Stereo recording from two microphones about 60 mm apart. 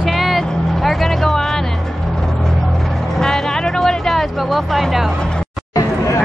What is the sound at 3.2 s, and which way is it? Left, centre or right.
Music, centre.